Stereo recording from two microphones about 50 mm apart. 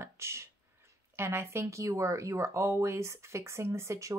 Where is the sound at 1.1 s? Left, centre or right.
Right.